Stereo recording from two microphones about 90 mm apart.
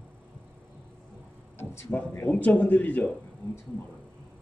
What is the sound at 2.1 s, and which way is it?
Speech, 25° left (ahead or behind).